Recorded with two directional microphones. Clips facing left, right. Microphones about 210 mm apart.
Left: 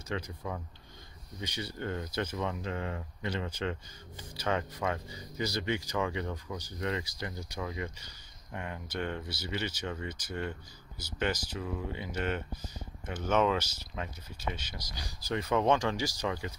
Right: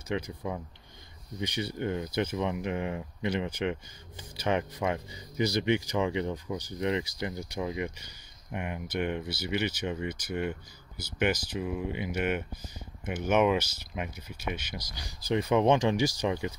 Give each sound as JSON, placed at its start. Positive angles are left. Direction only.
{"t": 0.1, "sound": "speech", "side_deg": -15}